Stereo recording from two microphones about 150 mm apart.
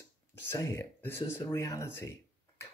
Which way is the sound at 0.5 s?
20° left (ahead or behind).